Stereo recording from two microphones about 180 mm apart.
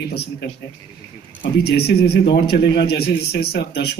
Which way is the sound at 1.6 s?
65° left (ahead or behind).